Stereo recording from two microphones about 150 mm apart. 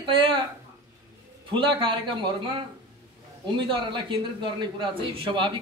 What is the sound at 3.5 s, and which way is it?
A man's voice, 30° right (ahead or behind).